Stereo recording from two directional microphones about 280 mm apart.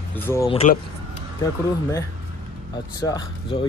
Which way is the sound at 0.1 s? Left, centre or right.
Centre.